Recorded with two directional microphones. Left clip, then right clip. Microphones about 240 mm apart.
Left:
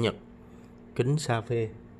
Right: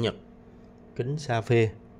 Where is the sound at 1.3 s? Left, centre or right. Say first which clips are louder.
Right 5 dB; centre.